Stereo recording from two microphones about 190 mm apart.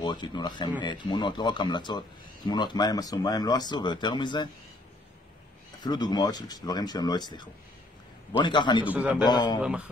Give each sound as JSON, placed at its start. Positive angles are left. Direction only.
{"t": 0.0, "sound": "speech", "side_deg": 20}
{"t": 5.9, "sound": "speech", "side_deg": 20}
{"t": 8.8, "sound": "a man's voice", "side_deg": -10}
{"t": 9.2, "sound": "speech", "side_deg": 20}
{"t": 9.6, "sound": "speech", "side_deg": -5}